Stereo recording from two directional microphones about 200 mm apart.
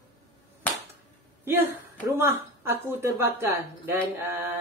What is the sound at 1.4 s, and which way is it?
A woman's voice, 10° right (ahead or behind).